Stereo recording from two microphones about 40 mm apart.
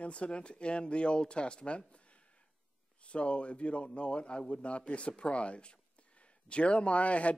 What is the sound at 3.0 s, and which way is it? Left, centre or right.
Speech, left.